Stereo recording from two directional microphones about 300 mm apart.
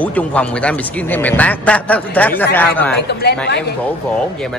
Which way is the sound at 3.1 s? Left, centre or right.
Left.